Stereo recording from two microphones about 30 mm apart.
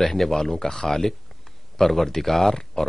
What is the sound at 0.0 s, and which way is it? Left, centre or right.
Speech, centre.